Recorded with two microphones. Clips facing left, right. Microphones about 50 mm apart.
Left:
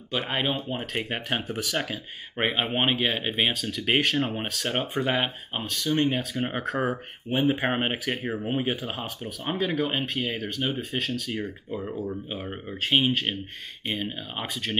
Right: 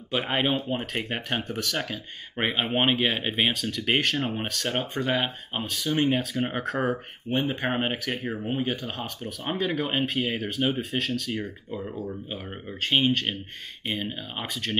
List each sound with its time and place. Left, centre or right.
0.1 s speech: centre
5.6 s speech: centre